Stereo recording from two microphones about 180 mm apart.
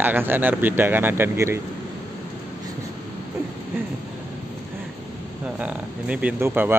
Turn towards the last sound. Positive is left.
turn(degrees=-10)  # may be behind; listen again after turning